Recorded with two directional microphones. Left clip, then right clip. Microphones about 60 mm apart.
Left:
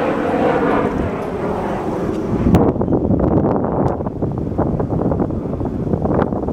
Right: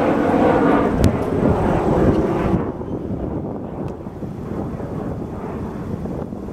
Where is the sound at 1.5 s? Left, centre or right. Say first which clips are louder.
Right 2 dB; centre.